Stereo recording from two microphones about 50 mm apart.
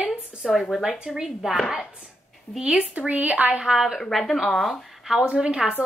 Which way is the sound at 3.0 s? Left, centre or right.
Right.